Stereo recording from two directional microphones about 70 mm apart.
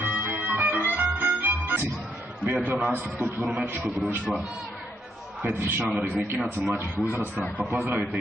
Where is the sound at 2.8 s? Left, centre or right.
Right.